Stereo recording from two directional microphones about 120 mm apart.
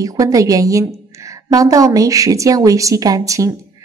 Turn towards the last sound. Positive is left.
turn(degrees=-25)  # may be behind; listen again after turning